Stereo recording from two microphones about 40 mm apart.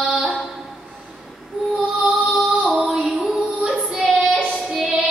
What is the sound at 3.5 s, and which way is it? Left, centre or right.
Child singing, right.